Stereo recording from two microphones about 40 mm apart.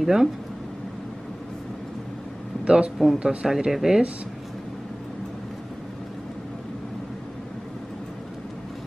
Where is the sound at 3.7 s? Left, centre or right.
Centre.